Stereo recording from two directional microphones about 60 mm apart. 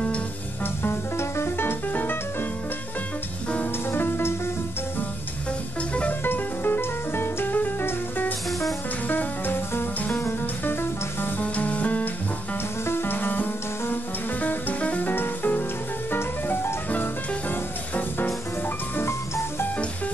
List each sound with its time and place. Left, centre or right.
0.8 s music: left
3.9 s music: left
6.2 s music: left
8.5 s music: centre
9.1 s music: left
11.4 s music: left
12.8 s music: left
18.9 s music: left